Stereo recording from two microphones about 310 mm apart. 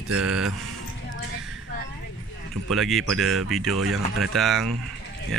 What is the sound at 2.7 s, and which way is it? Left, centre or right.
Speech, centre.